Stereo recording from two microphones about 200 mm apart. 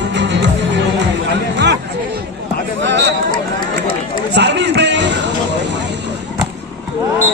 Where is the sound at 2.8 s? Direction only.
60° right (ahead or behind).